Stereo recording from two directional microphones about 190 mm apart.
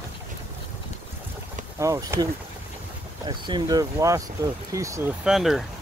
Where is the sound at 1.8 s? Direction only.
15° right (ahead or behind).